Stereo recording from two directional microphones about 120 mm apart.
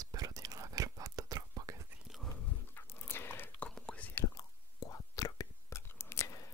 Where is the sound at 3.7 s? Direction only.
10° left (ahead or behind).